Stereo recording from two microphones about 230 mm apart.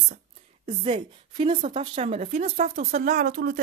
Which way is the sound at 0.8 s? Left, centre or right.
Right.